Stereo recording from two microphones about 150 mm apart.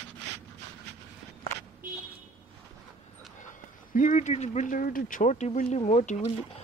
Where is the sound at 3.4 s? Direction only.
60° left (ahead or behind).